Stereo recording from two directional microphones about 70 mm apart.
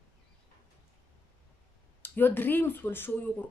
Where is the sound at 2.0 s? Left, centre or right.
Left.